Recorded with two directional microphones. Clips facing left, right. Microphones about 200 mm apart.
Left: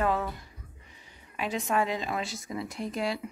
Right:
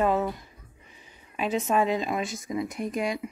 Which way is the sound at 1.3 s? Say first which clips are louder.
Right 4 dB; 20° right (ahead or behind).